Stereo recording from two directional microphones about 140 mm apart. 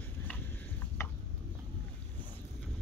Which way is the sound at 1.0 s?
20° left (ahead or behind).